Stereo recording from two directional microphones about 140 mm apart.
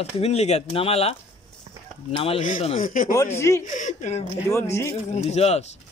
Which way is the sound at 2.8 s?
75° left (ahead or behind).